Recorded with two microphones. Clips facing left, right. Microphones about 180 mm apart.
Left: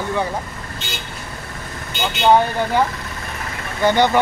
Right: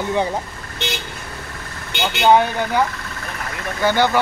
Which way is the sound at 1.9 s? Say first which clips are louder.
Right 1 dB; 70° right (ahead or behind).